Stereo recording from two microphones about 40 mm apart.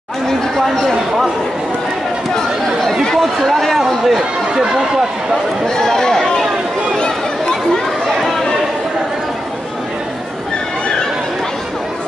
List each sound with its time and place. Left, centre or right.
2.9 s a man's voice: centre
5.8 s a sound: centre
7.0 s chatter: centre